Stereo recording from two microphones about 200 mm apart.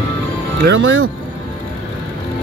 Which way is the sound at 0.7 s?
75° right (ahead or behind).